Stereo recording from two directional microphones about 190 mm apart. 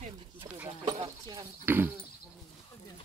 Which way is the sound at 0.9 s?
25° right (ahead or behind).